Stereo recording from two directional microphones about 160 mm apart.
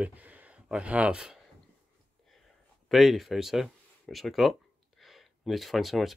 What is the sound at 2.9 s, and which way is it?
Speech, centre (ahead or behind).